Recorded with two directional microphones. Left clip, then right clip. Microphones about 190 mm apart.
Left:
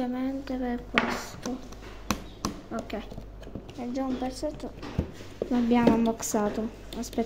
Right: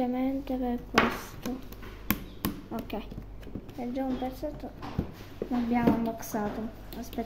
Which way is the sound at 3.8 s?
5° right (ahead or behind).